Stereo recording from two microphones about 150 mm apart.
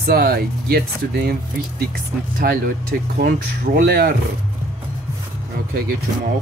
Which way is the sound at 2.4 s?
70° right (ahead or behind).